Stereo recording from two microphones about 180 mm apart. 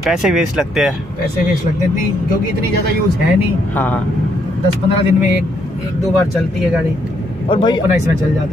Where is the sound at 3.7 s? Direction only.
10° left (ahead or behind).